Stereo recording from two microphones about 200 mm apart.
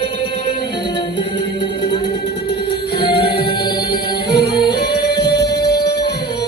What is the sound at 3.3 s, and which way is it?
Music, 50° left (ahead or behind).